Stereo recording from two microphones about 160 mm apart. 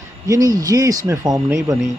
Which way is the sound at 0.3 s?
20° right (ahead or behind).